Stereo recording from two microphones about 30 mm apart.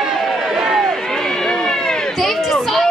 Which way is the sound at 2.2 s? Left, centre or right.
Centre.